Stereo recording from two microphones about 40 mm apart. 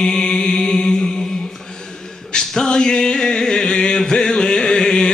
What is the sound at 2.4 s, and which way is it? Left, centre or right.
Music, centre.